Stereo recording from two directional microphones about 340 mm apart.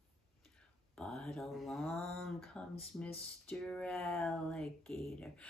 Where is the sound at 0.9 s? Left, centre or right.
Centre.